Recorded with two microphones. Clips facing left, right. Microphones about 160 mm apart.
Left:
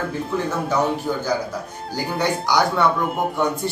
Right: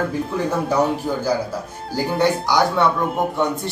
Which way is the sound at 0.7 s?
10° right (ahead or behind).